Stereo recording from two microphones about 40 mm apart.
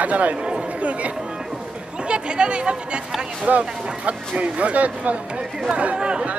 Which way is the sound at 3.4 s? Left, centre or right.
Right.